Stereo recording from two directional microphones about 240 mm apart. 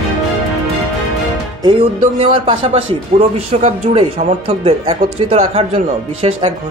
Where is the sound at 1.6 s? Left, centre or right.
Right.